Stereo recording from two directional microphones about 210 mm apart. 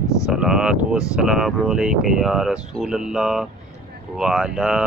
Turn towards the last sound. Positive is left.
turn(degrees=-5)  # may be behind; listen again after turning